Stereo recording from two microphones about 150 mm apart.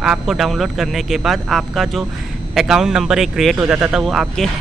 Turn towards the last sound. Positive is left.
turn(degrees=0)  # may be behind; listen again after turning